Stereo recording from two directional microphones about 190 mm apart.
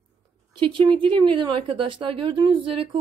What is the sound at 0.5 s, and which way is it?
Speech, 25° right (ahead or behind).